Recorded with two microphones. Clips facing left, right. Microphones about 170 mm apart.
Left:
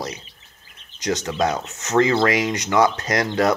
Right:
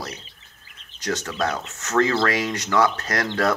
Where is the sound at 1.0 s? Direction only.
15° left (ahead or behind).